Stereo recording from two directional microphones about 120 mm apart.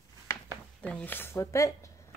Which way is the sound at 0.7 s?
10° left (ahead or behind).